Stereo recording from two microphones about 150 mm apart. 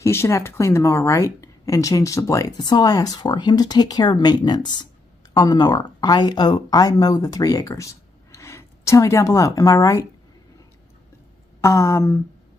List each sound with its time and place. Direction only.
0.0 s speech: 20° left (ahead or behind)
11.6 s speech: 20° left (ahead or behind)